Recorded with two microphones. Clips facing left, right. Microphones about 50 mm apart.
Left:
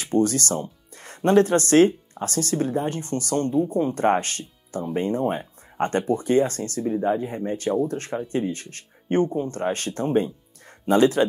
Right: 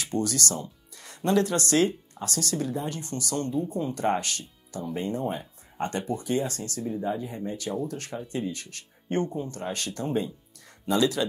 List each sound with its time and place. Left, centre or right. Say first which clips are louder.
0.0 s speech: left 7 dB; left